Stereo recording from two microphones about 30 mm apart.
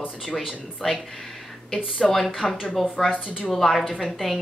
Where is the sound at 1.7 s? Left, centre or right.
Centre.